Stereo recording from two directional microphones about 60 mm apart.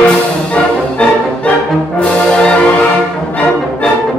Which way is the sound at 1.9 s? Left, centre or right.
Centre.